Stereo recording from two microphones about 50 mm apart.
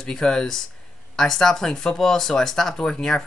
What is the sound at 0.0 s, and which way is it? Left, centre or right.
Speech, centre.